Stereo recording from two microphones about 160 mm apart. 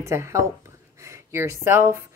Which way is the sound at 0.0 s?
20° right (ahead or behind).